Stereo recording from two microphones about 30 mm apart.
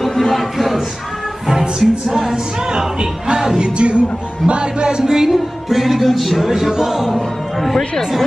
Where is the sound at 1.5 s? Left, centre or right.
Centre.